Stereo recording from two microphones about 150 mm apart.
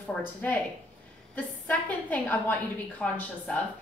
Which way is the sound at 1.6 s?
10° left (ahead or behind).